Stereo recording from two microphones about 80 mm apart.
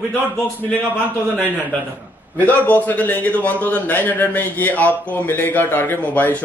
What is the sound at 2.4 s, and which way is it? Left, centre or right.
A man's voice, left.